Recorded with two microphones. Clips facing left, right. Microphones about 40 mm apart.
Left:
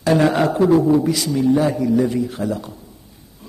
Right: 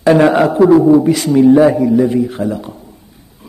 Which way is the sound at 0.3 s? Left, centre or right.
Centre.